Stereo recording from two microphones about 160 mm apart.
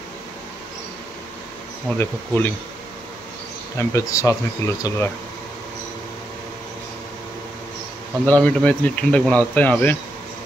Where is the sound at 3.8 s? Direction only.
20° left (ahead or behind).